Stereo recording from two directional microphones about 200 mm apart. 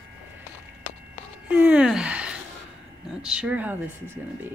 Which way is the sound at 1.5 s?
10° right (ahead or behind).